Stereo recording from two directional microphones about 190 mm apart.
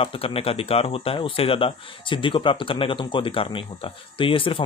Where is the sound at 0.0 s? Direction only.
30° left (ahead or behind).